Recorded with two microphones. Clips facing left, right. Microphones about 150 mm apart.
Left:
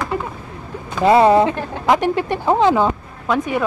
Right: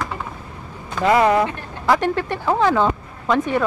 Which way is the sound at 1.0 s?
30° left (ahead or behind).